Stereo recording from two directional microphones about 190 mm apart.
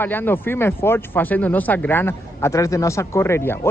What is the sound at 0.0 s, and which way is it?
Speech, 10° left (ahead or behind).